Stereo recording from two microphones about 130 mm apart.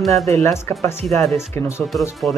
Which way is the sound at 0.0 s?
Centre (ahead or behind).